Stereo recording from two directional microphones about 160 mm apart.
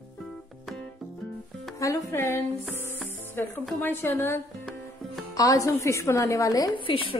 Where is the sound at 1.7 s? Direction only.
20° left (ahead or behind).